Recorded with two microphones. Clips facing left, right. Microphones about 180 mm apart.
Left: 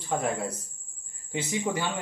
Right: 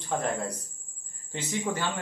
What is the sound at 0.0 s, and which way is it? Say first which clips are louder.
Speech: left 1 dB; 5° left (ahead or behind).